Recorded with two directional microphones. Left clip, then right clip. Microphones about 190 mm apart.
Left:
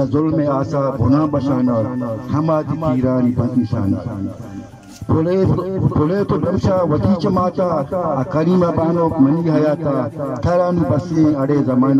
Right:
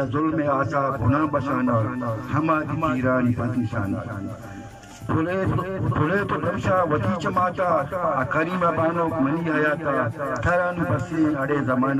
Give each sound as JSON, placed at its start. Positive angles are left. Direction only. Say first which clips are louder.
{"t": 0.1, "sound": "a man's voice", "louder": "left 5 dB", "side_deg": 30}
{"t": 5.1, "sound": "a man's voice", "louder": "left 7 dB", "side_deg": 35}